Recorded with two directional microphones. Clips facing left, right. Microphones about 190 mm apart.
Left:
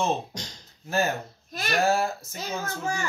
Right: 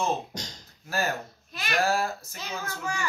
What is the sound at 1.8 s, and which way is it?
Speech, 25° left (ahead or behind).